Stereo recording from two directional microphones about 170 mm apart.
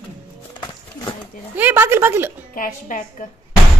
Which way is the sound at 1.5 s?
10° right (ahead or behind).